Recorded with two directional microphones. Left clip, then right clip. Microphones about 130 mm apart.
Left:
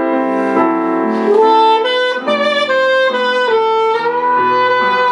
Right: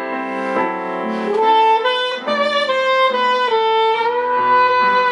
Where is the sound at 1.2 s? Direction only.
40° right (ahead or behind).